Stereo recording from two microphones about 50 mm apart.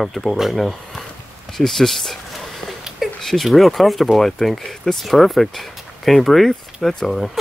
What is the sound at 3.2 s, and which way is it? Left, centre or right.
Speech, centre.